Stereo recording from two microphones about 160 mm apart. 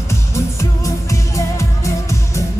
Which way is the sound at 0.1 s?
20° left (ahead or behind).